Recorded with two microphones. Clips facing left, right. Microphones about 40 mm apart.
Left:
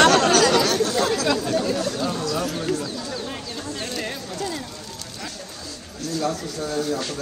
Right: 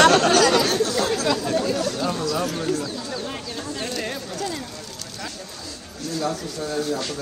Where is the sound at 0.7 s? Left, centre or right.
Left.